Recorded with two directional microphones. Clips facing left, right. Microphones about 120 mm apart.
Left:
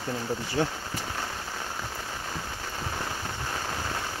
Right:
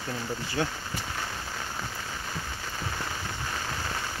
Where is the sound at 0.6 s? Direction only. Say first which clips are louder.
Left 2 dB; 20° left (ahead or behind).